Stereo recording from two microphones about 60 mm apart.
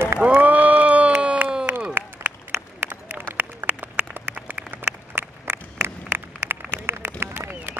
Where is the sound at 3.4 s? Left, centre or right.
Right.